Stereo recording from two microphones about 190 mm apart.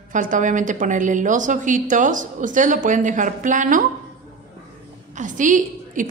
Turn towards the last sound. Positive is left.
turn(degrees=-40)  # may be behind; listen again after turning